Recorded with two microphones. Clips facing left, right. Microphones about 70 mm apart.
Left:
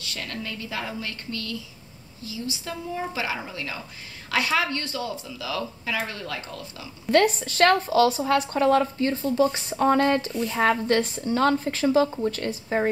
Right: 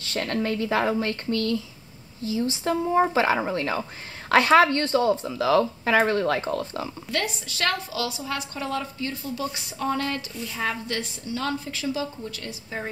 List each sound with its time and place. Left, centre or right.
0.0 s speech: right
7.1 s speech: left